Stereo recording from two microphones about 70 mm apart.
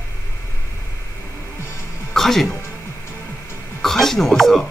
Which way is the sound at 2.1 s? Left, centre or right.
Centre.